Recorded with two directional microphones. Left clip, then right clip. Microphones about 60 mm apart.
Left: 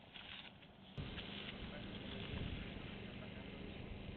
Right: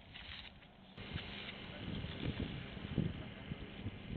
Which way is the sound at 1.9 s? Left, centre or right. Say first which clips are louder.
Right 6 dB; right.